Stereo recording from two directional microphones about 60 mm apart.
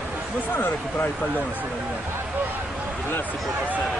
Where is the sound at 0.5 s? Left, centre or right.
Left.